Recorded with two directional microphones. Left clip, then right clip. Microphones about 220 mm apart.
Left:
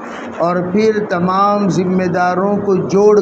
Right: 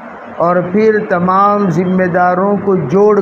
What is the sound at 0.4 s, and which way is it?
A man's voice, 30° right (ahead or behind).